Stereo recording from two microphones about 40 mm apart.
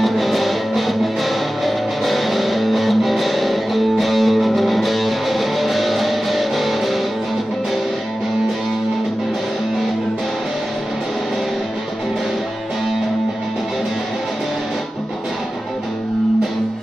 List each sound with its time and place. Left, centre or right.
0.0 s music: centre